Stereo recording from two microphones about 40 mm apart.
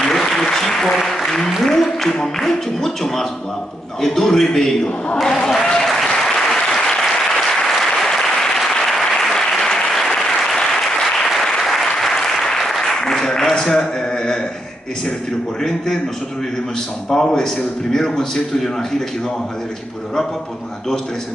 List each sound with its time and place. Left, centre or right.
0.0 s applause: centre
1.7 s speech: centre
6.1 s applause: centre
13.7 s speech: centre
17.1 s speech: centre